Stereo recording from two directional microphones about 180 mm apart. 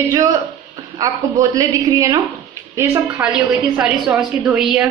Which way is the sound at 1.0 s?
20° right (ahead or behind).